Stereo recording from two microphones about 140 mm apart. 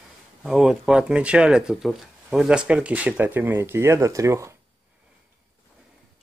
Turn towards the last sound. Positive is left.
turn(degrees=-20)  # may be behind; listen again after turning